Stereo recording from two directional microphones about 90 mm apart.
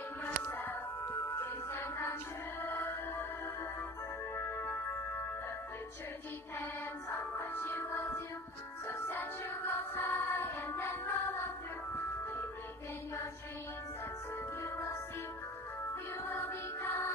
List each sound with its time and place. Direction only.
0.2 s music: 20° left (ahead or behind)
4.4 s music: 25° left (ahead or behind)
6.6 s music: 20° left (ahead or behind)
14.6 s music: 25° left (ahead or behind)